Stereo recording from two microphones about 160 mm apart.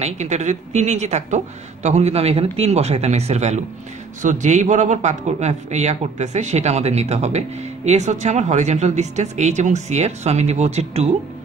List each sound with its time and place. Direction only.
0.0 s a man's voice: 45° right (ahead or behind)